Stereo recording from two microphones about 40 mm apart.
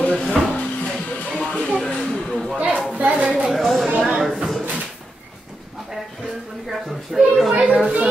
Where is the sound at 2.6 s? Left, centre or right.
Right.